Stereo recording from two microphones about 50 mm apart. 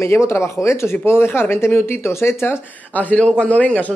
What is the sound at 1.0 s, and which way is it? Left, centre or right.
Speech, left.